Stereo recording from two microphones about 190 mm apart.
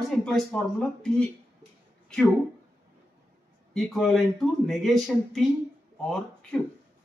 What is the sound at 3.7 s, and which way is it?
Speech, centre (ahead or behind).